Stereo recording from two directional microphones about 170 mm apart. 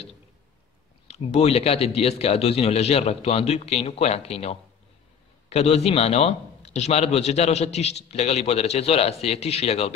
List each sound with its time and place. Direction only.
1.0 s a man's voice: 40° left (ahead or behind)